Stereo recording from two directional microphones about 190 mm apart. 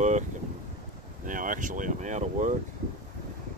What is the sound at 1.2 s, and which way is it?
Speech, 45° right (ahead or behind).